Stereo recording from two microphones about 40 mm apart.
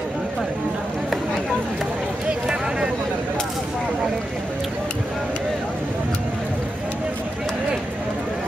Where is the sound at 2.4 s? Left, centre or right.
Right.